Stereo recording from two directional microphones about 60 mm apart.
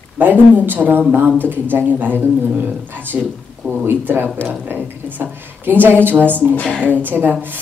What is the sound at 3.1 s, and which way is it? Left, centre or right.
Speech, centre.